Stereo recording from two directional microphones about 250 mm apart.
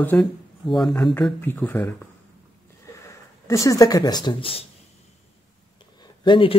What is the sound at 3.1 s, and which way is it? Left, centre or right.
Speech, centre.